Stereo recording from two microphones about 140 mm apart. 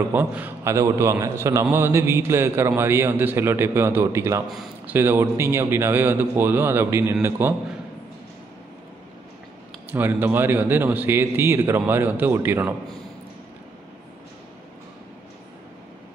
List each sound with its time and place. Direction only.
0.1 s a man's voice: 15° right (ahead or behind)
9.8 s a man's voice: 15° right (ahead or behind)